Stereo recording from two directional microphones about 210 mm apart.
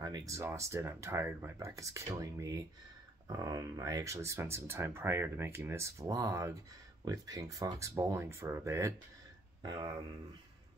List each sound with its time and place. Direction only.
0.0 s speech: 15° right (ahead or behind)